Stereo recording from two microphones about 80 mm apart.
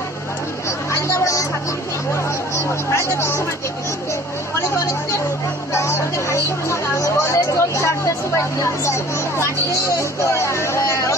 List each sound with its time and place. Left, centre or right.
0.9 s music: left
2.5 s speech: left
5.7 s music: left
8.8 s speech: left